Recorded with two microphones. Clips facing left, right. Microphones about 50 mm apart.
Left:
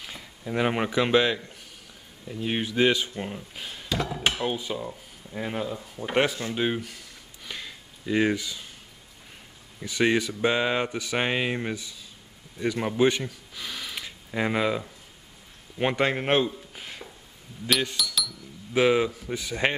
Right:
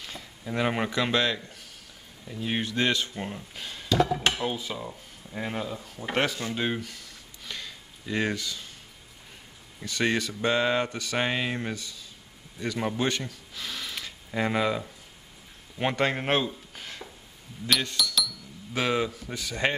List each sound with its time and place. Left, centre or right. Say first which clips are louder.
0.0 s a sound: left 1 dB; centre
0.6 s speech: left 2 dB; centre
2.4 s speech: left 4 dB; centre
4.2 s music: even; centre
4.7 s speech: left 3 dB; centre
7.4 s a sound: left 1 dB; centre
9.8 s speech: left 3 dB; centre